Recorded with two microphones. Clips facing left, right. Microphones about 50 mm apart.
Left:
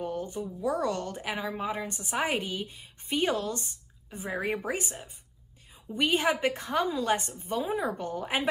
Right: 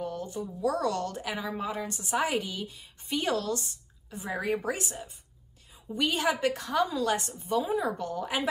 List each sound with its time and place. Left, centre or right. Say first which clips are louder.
0.0 s a sound: left 1 dB; left
0.6 s a woman's voice: right 1 dB; left
5.9 s a woman's voice: left 1 dB; left